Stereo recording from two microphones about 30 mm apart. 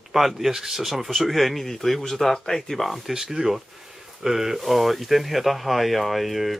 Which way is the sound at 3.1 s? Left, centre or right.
Centre.